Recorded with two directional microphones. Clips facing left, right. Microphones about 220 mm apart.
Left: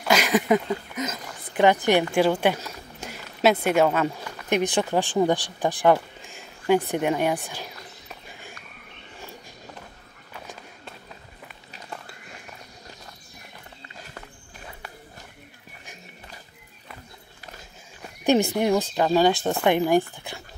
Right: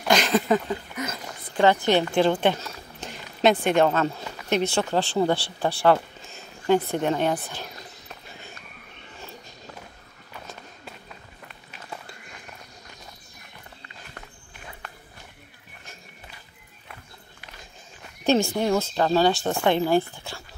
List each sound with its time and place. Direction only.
0.0 s speech: 5° left (ahead or behind)
8.1 s a sound: 10° left (ahead or behind)
18.2 s speech: 15° left (ahead or behind)